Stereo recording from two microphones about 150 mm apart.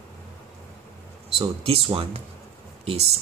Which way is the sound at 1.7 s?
40° right (ahead or behind).